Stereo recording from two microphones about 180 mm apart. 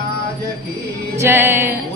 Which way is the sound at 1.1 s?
15° right (ahead or behind).